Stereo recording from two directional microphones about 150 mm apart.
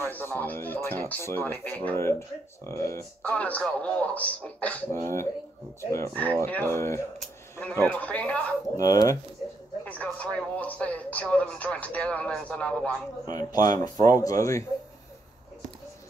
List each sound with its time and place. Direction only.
0.0 s speech: 15° left (ahead or behind)
8.7 s speech: 25° left (ahead or behind)
9.8 s speech: 10° left (ahead or behind)
13.3 s speech: 25° left (ahead or behind)